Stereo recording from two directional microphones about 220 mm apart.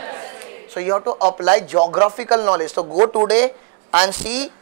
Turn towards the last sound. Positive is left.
turn(degrees=-10)  # may be behind; listen again after turning